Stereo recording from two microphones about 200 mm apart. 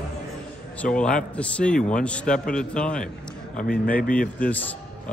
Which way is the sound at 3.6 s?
45° left (ahead or behind).